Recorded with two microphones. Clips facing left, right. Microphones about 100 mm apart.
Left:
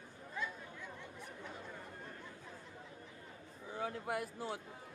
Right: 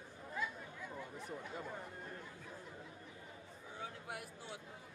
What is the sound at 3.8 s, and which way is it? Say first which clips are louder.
Speech: left 9 dB; 50° left (ahead or behind).